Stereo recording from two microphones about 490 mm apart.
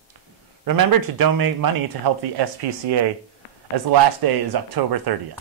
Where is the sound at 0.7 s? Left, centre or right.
Right.